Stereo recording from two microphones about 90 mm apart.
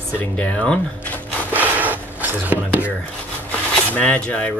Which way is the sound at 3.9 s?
15° left (ahead or behind).